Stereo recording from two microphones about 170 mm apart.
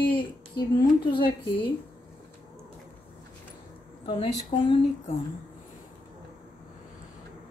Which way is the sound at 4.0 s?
30° left (ahead or behind).